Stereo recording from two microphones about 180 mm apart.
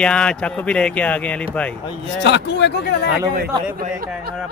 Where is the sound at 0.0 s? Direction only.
5° left (ahead or behind).